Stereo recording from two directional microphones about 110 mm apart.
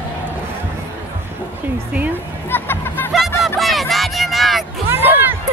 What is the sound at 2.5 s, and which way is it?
Music, 20° left (ahead or behind).